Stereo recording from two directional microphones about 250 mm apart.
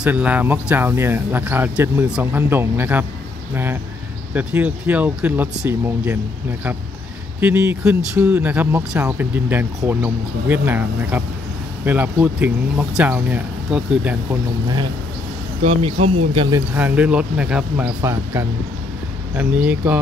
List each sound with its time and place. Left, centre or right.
0.0 s speech: centre
4.3 s speech: centre
7.3 s speech: centre
15.6 s speech: right; by 20.0 s centre